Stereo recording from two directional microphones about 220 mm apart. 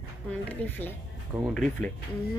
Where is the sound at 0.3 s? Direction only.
5° left (ahead or behind).